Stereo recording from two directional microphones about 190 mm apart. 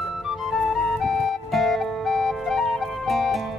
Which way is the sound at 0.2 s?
Centre (ahead or behind).